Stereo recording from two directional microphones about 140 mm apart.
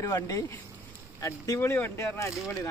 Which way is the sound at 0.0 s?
25° left (ahead or behind).